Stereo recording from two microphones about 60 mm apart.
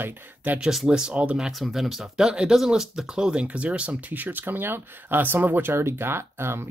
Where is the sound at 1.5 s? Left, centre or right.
Centre.